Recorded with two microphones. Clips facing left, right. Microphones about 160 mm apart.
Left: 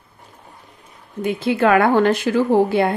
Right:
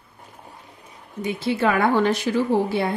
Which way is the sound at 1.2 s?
55° left (ahead or behind).